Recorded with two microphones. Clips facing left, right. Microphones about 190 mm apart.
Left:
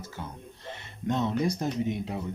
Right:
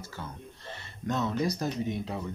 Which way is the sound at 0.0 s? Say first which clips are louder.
Left 1 dB; 20° left (ahead or behind).